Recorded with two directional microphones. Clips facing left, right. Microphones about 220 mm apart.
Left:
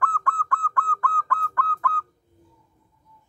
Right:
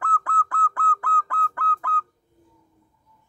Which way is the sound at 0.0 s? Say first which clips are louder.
Even; 20° right (ahead or behind).